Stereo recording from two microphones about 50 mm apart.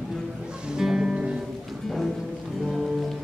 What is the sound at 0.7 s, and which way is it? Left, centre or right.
Music, centre.